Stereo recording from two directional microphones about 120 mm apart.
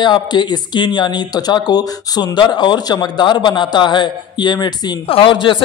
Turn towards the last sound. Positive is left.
turn(degrees=45)  # may be behind; listen again after turning